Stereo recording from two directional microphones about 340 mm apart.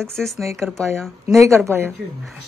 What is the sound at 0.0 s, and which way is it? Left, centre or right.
A woman's voice, centre.